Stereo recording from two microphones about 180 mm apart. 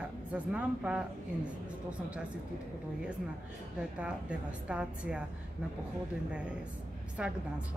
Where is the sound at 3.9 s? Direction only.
5° right (ahead or behind).